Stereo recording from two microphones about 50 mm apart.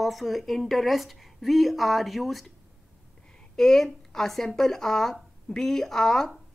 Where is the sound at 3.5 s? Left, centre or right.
Centre.